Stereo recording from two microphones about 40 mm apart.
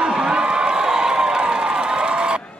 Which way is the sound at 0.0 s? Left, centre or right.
Centre.